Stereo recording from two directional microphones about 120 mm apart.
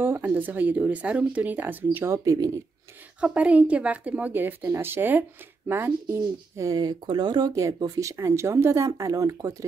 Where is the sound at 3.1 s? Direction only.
10° right (ahead or behind).